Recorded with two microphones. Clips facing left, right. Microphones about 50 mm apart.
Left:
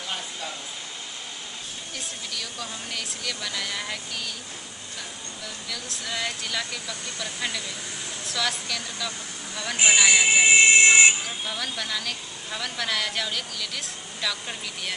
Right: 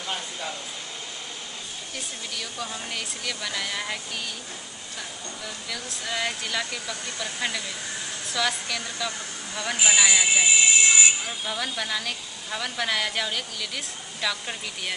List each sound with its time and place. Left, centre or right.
2.3 s a woman's voice: centre
5.7 s a woman's voice: centre
10.4 s speech: left
11.2 s a woman's voice: centre